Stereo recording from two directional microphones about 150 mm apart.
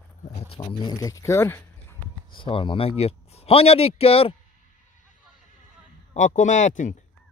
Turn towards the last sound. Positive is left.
turn(degrees=55)  # may be behind; listen again after turning